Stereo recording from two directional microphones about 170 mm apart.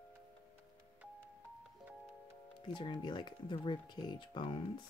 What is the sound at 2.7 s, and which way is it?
Speech, 25° left (ahead or behind).